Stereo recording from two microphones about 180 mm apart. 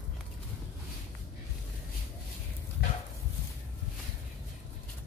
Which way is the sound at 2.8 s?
70° left (ahead or behind).